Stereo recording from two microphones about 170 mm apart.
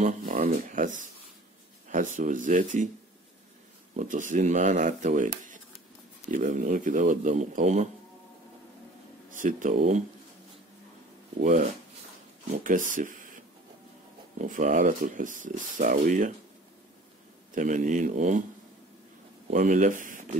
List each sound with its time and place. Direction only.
0.0 s speech: 55° right (ahead or behind)
3.9 s speech: 50° right (ahead or behind)
9.3 s speech: 50° right (ahead or behind)
12.6 s speech: 50° right (ahead or behind)
14.5 s speech: 50° right (ahead or behind)
17.6 s speech: 50° right (ahead or behind)
19.5 s speech: 50° right (ahead or behind)